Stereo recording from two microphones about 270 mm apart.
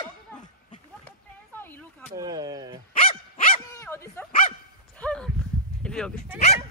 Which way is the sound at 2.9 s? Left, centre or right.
Left.